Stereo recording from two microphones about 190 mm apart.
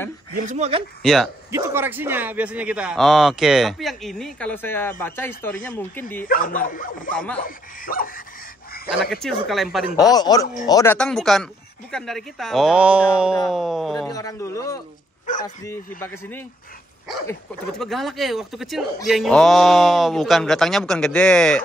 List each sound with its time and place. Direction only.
0.3 s speech: 40° right (ahead or behind)
1.0 s a man's voice: centre (ahead or behind)
1.5 s a man's voice: 10° right (ahead or behind); by 6.0 s 10° left (ahead or behind)
6.2 s speech: 50° left (ahead or behind)
8.9 s a man's voice: centre (ahead or behind)
10.1 s speech: 20° left (ahead or behind)
11.0 s a man's voice: 5° left (ahead or behind)
14.1 s speech: 15° left (ahead or behind)
15.3 s speech: 45° left (ahead or behind)
16.0 s speech: 10° left (ahead or behind)
17.6 s a man's voice: centre (ahead or behind)